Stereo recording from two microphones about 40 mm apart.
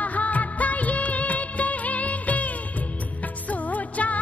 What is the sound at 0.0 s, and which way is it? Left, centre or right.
Music of bollywood, left.